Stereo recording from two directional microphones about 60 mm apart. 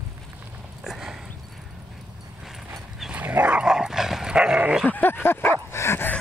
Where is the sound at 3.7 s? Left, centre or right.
Centre.